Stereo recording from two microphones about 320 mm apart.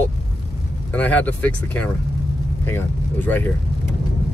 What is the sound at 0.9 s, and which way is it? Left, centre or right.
Speech, centre.